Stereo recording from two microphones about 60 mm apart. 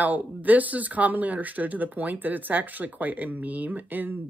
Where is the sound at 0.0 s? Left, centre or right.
Right.